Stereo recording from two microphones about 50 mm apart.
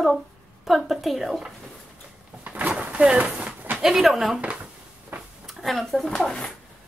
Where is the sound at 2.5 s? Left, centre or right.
Right.